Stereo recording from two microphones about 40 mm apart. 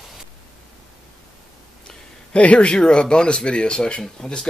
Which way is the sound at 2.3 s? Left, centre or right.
Left.